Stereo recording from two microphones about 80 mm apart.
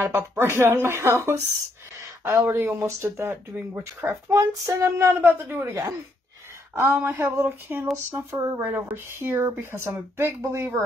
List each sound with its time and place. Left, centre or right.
0.0 s speech: right
6.7 s a sound: right
8.1 s speech: right